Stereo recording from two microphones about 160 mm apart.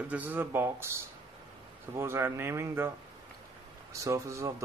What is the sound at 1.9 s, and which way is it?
Speech, 15° right (ahead or behind).